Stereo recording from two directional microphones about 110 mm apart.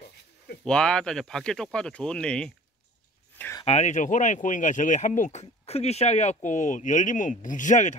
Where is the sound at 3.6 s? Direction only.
85° left.